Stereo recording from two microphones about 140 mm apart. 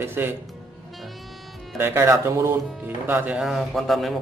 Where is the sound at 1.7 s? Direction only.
20° right (ahead or behind); by 4.1 s centre (ahead or behind).